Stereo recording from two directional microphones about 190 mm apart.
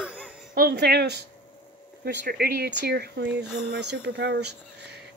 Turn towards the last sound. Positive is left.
turn(degrees=-60)  # may be behind; listen again after turning